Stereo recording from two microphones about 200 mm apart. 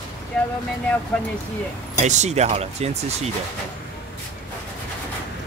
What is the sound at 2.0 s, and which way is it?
Speech, 35° right (ahead or behind).